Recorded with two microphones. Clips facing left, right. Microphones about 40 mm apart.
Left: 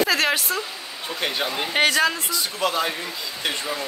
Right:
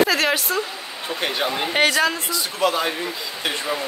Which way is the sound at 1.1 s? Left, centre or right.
Centre.